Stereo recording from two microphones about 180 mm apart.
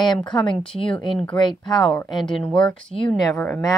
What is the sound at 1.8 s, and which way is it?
Speech, 5° left (ahead or behind).